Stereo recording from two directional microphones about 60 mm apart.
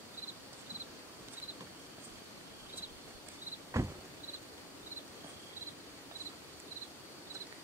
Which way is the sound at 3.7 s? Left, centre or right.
Right.